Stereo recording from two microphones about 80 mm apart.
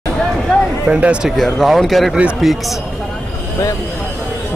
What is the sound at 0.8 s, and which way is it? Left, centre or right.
Speech, centre.